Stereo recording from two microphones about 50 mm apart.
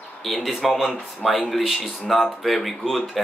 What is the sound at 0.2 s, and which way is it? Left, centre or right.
Speech, centre.